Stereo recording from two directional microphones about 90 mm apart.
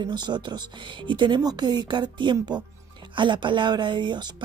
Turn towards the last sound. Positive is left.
turn(degrees=-60)  # may be behind; listen again after turning